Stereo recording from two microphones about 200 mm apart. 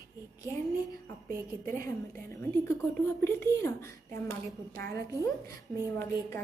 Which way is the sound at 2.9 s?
10° left (ahead or behind).